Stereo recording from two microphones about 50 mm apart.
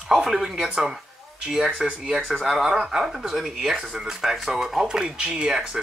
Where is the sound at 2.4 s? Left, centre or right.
Centre.